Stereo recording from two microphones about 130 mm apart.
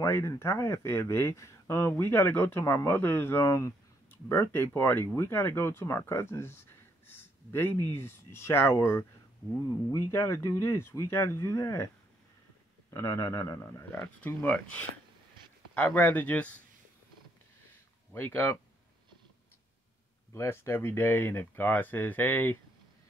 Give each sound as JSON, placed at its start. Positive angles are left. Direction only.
{"t": 0.0, "sound": "speech", "side_deg": 20}
{"t": 12.9, "sound": "speech", "side_deg": 20}
{"t": 18.1, "sound": "speech", "side_deg": 15}
{"t": 20.3, "sound": "speech", "side_deg": 20}